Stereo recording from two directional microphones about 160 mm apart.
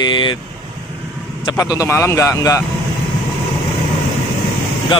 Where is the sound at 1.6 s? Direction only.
20° left (ahead or behind).